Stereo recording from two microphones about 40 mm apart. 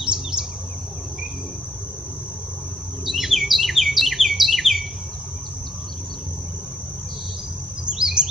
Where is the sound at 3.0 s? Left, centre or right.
Centre.